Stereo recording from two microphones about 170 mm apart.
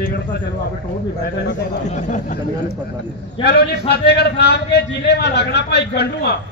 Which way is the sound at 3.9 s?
70° left (ahead or behind).